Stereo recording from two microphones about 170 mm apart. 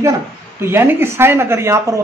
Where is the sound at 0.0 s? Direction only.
15° right (ahead or behind).